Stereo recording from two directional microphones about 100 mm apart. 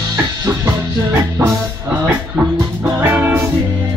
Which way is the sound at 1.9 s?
15° right (ahead or behind).